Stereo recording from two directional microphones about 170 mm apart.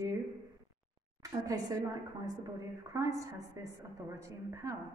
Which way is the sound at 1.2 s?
20° right (ahead or behind).